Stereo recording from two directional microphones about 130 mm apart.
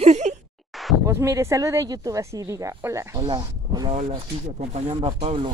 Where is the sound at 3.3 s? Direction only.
35° right (ahead or behind).